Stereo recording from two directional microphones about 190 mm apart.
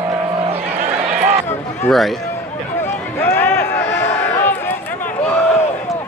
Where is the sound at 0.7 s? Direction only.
35° right (ahead or behind).